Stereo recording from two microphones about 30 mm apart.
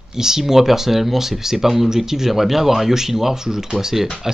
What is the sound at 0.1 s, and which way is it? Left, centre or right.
Speech, centre.